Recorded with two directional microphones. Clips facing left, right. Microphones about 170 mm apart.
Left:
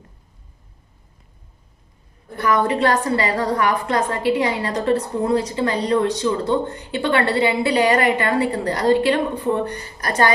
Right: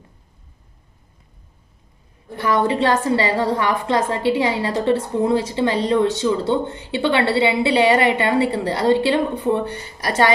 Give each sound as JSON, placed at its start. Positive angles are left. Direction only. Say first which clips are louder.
{"t": 2.4, "sound": "a woman's voice", "louder": "even", "side_deg": -25}